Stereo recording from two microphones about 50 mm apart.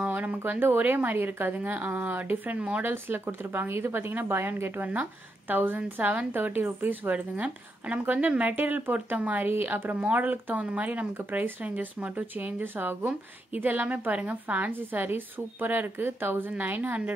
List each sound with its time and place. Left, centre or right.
0.0 s a sound: right
0.6 s speech: right
2.9 s speech: right